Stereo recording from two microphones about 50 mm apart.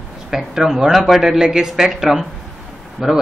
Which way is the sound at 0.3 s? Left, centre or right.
Centre.